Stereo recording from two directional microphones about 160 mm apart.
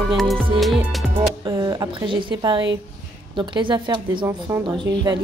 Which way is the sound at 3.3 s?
30° right (ahead or behind).